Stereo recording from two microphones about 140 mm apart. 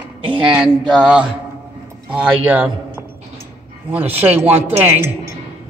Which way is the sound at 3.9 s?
10° right (ahead or behind).